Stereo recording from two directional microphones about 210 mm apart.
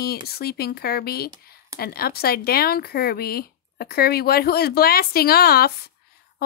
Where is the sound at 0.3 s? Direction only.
45° left (ahead or behind).